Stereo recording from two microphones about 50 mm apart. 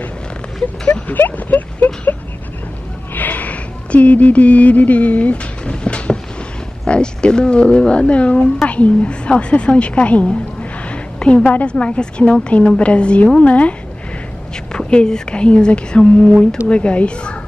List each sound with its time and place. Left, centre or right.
1.0 s speech: left
3.2 s a sound: left
6.9 s a woman's voice: centre